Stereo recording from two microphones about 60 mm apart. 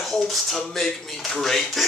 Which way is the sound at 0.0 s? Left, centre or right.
Centre.